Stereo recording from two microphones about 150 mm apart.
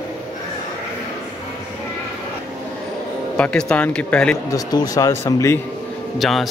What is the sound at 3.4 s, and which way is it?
A man's voice, 5° left (ahead or behind).